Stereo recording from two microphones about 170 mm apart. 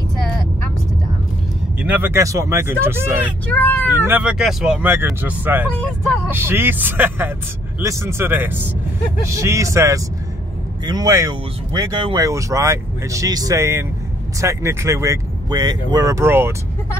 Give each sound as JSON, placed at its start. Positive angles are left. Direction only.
{"t": 1.8, "sound": "speech", "side_deg": -10}
{"t": 3.5, "sound": "speech", "side_deg": 10}
{"t": 3.8, "sound": "speech", "side_deg": -10}